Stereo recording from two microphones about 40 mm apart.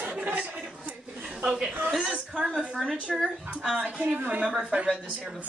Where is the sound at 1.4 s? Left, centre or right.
Centre.